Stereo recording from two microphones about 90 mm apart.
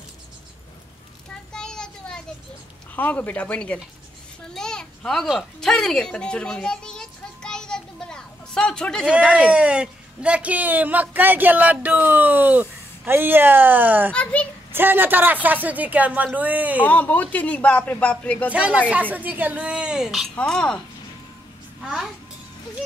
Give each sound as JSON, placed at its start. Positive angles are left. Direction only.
{"t": 1.5, "sound": "a sound", "side_deg": 5}
{"t": 3.0, "sound": "speech", "side_deg": 20}
{"t": 4.6, "sound": "a sound", "side_deg": 5}
{"t": 9.3, "sound": "speech", "side_deg": -10}
{"t": 14.1, "sound": "a sound", "side_deg": 15}
{"t": 14.7, "sound": "a woman's voice", "side_deg": -25}
{"t": 16.8, "sound": "speech", "side_deg": 15}
{"t": 19.1, "sound": "a woman's voice", "side_deg": -20}
{"t": 20.3, "sound": "speech", "side_deg": 10}
{"t": 21.8, "sound": "a child's voice", "side_deg": -5}